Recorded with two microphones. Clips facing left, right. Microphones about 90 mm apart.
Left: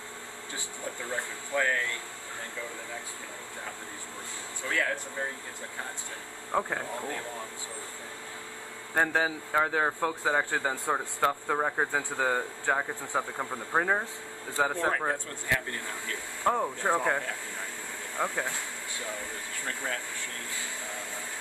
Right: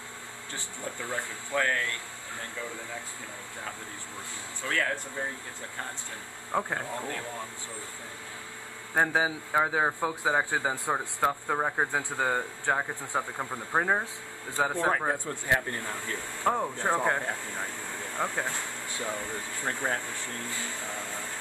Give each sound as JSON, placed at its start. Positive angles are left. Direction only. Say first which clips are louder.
{"t": 1.5, "sound": "speech", "louder": "even", "side_deg": 5}
{"t": 6.5, "sound": "speech", "louder": "even", "side_deg": 0}
{"t": 8.9, "sound": "a man's voice", "louder": "right 1 dB", "side_deg": -10}
{"t": 15.4, "sound": "speech", "louder": "right 3 dB", "side_deg": -30}
{"t": 16.4, "sound": "speech", "louder": "even", "side_deg": 0}
{"t": 18.1, "sound": "speech", "louder": "even", "side_deg": 0}
{"t": 19.6, "sound": "speech", "louder": "right 4 dB", "side_deg": -30}